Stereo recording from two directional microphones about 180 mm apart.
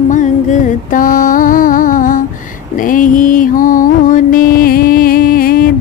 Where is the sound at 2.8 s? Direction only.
50° left (ahead or behind).